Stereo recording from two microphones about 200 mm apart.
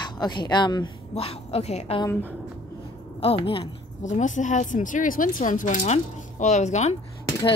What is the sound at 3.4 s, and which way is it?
Speech, 30° left (ahead or behind).